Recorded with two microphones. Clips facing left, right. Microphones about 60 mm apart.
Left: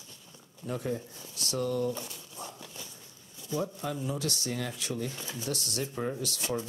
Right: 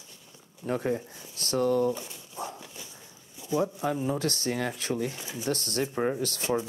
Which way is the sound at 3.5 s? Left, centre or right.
Right.